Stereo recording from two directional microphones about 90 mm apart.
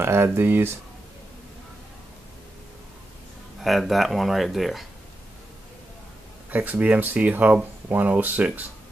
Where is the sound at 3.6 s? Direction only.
Centre (ahead or behind).